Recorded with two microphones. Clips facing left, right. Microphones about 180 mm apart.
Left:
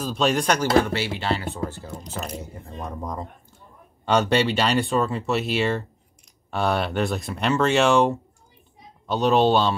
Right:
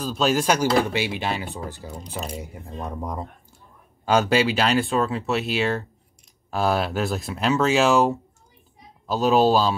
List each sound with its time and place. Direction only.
0.0 s speech: centre (ahead or behind)